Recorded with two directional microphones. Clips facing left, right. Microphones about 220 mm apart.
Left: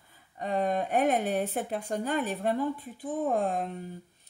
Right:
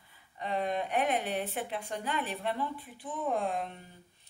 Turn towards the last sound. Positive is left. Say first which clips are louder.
# left 4 dB
turn(degrees=45)  # may be behind; listen again after turning